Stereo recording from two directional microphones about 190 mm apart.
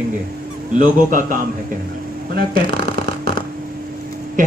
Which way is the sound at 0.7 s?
45° right (ahead or behind).